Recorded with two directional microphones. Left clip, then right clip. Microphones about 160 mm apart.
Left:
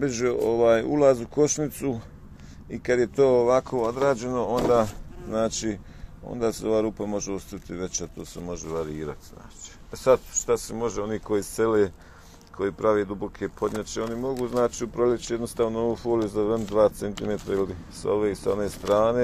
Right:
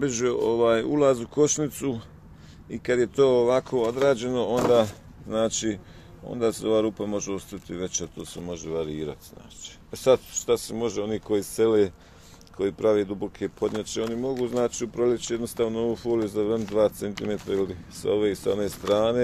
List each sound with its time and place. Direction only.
0.0 s speech: 20° right (ahead or behind)